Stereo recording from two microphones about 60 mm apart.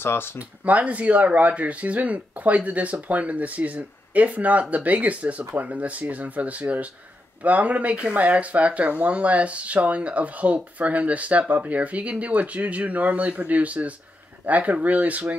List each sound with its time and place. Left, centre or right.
0.0 s speech: left
0.4 s speech: right